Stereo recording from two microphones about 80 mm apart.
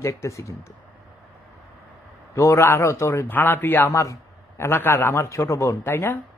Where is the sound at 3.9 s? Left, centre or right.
Left.